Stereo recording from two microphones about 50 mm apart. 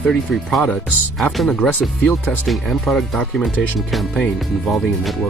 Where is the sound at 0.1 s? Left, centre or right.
Centre.